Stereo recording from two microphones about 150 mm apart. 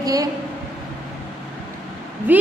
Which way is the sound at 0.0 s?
25° right (ahead or behind).